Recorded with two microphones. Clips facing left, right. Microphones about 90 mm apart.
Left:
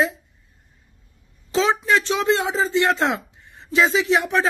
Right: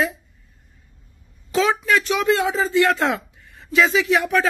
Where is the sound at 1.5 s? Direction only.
25° left (ahead or behind).